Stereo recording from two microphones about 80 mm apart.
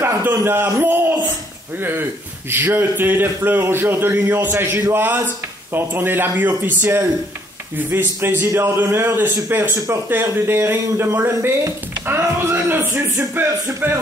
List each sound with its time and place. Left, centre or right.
0.0 s a man's voice: right
2.5 s a man's voice: right